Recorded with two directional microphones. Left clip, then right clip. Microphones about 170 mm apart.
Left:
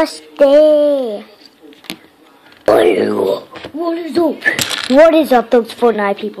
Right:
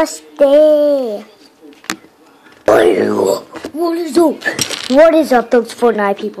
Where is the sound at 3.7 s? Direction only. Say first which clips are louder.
Right 2 dB; 45° right (ahead or behind).